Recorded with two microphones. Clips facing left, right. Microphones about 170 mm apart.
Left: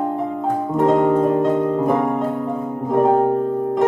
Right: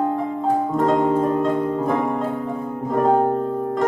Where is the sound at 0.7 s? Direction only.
20° left (ahead or behind).